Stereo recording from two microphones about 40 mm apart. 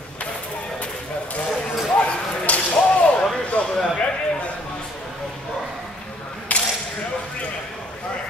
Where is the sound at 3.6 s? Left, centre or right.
Left.